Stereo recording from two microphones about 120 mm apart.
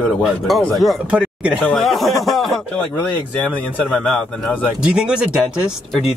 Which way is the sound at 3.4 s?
10° left (ahead or behind).